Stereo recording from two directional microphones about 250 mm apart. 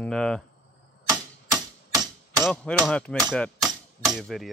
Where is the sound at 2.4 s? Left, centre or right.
Centre.